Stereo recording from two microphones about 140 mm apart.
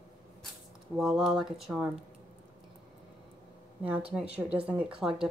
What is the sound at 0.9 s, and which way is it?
Speech, 5° right (ahead or behind).